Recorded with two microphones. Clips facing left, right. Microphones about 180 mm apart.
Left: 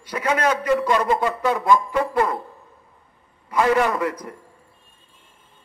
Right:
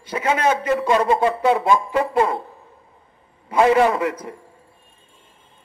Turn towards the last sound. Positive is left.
turn(degrees=-25)  # may be behind; listen again after turning